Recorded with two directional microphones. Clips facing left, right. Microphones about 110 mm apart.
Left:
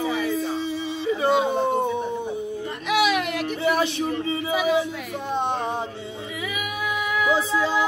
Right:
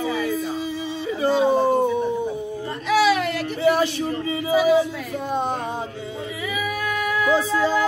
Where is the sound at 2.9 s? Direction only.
15° left (ahead or behind).